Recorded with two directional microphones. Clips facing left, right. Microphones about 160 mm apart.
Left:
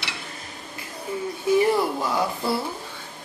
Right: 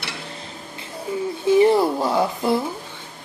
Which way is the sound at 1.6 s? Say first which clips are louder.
Right 5 dB; 25° right (ahead or behind).